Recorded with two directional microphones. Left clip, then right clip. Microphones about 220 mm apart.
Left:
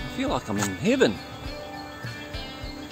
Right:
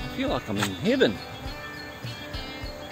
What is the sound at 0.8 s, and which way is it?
Speech, 15° left (ahead or behind).